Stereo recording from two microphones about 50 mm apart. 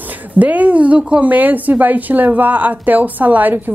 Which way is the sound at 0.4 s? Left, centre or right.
Right.